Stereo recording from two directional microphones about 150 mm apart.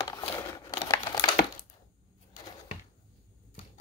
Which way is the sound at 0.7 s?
25° left (ahead or behind).